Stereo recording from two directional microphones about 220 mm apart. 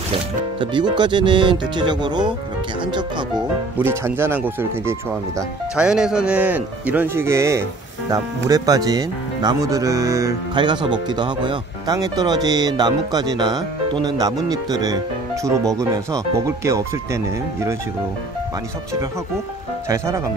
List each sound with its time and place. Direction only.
0.6 s speech: 20° right (ahead or behind)
3.7 s speech: 10° right (ahead or behind)